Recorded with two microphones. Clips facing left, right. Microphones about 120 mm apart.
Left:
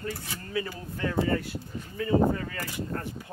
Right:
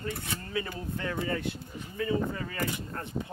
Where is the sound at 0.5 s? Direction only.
25° right (ahead or behind).